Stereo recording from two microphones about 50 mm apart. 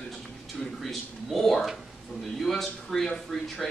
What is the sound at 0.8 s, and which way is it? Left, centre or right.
Speech, centre.